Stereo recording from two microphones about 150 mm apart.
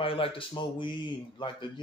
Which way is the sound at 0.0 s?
35° left (ahead or behind).